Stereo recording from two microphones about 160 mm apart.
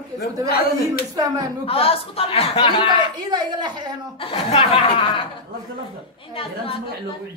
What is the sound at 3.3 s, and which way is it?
Speech, 25° right (ahead or behind).